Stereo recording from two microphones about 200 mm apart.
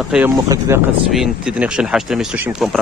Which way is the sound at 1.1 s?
5° right (ahead or behind).